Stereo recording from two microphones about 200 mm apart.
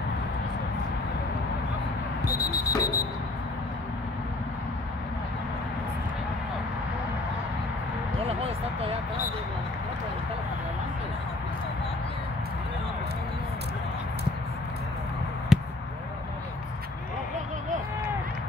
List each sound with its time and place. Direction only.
2.4 s alarm: 20° left (ahead or behind)
15.5 s basketball bounce: 5° right (ahead or behind)